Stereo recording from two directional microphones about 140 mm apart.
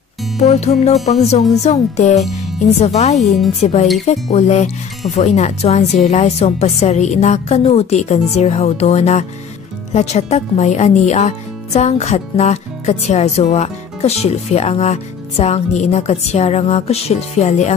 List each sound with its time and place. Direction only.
0.4 s speech: 55° left (ahead or behind)
3.2 s speech: centre (ahead or behind)
4.0 s speech: 50° left (ahead or behind)